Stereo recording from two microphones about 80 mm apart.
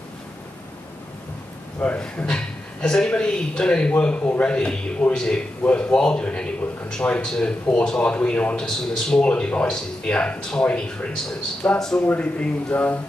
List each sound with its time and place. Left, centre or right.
1.8 s speech: centre